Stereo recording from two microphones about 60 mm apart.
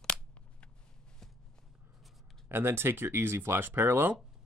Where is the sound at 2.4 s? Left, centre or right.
Right.